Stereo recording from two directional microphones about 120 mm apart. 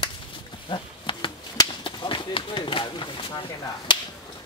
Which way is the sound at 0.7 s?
45° left (ahead or behind).